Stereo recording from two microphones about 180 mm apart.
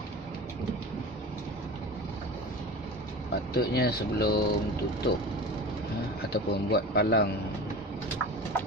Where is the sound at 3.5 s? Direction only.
60° left (ahead or behind).